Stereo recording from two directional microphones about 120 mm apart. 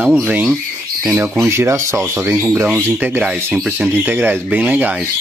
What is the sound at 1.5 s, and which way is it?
Speech, 25° right (ahead or behind).